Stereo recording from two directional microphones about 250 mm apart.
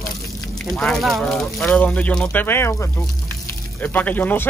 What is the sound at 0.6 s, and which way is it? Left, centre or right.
Speech, centre.